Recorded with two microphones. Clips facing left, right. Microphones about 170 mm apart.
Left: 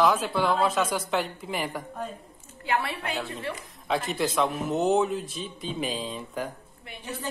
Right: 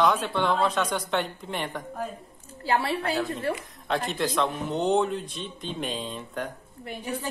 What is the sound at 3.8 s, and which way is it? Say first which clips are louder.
Speech: even; centre (ahead or behind).